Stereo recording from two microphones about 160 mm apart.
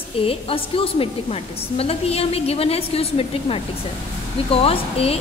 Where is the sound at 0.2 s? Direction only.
35° left (ahead or behind).